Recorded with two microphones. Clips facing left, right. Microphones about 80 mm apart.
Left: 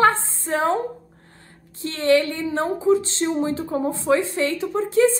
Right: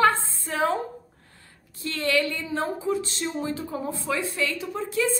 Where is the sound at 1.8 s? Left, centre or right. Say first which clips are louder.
Left 6 dB; left.